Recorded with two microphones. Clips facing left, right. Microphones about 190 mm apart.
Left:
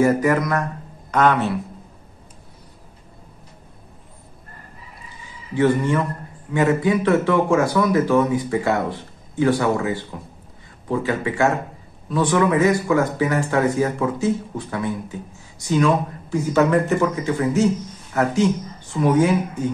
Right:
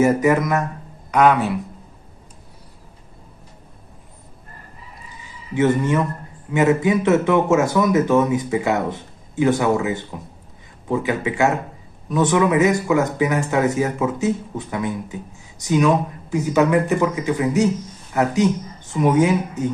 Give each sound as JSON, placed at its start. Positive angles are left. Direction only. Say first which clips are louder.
{"t": 0.4, "sound": "a man's voice", "louder": "right 1 dB", "side_deg": -20}
{"t": 5.5, "sound": "speech", "louder": "even", "side_deg": -20}